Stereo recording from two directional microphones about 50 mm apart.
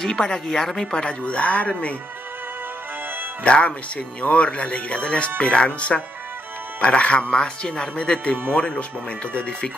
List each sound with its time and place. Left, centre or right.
0.0 s speech: centre
1.2 s speech: left
3.4 s speech: left